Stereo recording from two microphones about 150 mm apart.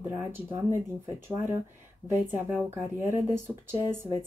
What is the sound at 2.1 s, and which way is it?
Speech, 15° right (ahead or behind).